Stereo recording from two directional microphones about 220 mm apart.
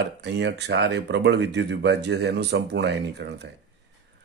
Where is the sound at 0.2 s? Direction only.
50° right (ahead or behind).